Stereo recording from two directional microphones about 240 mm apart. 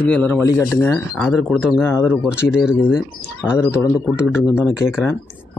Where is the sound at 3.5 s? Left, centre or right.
Centre.